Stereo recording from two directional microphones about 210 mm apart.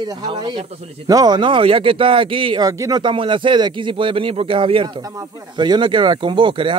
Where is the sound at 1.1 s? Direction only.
20° right (ahead or behind).